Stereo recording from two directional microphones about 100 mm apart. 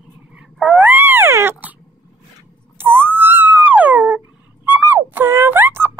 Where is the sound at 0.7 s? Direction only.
15° right (ahead or behind).